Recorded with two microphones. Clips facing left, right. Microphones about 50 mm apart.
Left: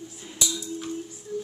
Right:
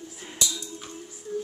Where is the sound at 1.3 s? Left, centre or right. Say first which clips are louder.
Right 1 dB; right.